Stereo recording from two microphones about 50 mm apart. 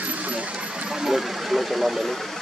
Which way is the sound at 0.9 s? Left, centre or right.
Centre.